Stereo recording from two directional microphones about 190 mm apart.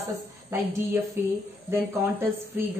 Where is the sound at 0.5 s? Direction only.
15° right (ahead or behind).